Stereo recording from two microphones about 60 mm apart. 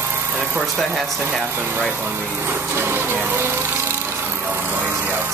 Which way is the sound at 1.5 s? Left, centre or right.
Right.